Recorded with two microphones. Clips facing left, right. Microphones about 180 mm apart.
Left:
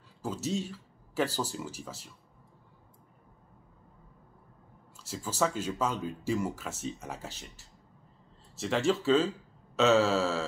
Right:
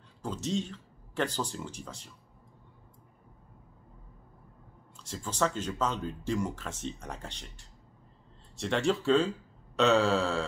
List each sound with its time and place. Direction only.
0.2 s speech: 5° left (ahead or behind)
4.9 s speech: 5° left (ahead or behind)